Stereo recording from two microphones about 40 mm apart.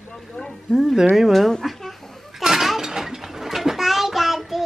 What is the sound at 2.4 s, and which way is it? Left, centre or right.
Mechanisms, centre.